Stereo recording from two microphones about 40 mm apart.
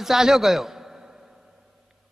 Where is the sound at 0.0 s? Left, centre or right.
Centre.